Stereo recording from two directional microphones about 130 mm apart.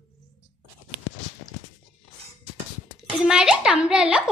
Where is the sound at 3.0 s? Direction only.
5° right (ahead or behind).